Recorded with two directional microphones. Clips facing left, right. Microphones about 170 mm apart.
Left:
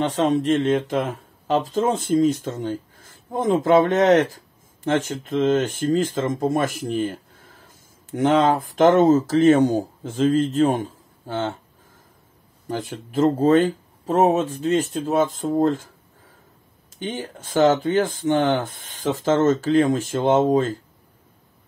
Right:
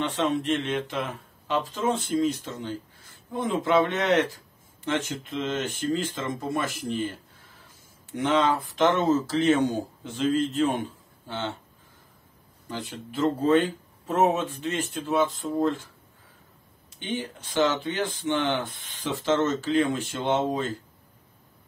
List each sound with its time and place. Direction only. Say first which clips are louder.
0.0 s speech: left 6 dB; 40° left (ahead or behind)
12.6 s speech: left 7 dB; 45° left (ahead or behind)
17.0 s speech: left 2 dB; 45° left (ahead or behind)